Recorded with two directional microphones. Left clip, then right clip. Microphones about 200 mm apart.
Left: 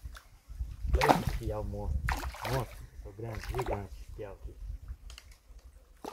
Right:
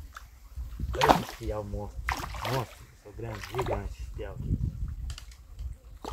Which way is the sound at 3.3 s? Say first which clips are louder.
Right 4 dB; 15° left (ahead or behind).